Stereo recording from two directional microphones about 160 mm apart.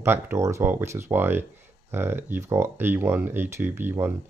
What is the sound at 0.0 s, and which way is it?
Speech, 15° right (ahead or behind).